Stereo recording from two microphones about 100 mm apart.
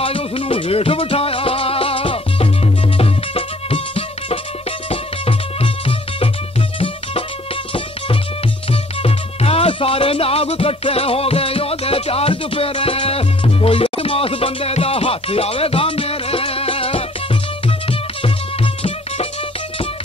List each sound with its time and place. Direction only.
0.0 s music: 65° left (ahead or behind)
9.0 s music: 80° left